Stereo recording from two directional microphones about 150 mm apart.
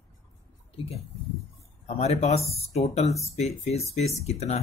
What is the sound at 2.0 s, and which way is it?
Speech, 45° left (ahead or behind).